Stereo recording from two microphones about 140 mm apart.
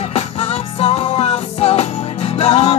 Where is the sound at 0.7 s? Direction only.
45° left (ahead or behind).